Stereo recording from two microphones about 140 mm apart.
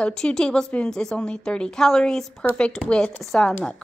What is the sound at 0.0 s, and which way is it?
A woman's voice, 5° left (ahead or behind).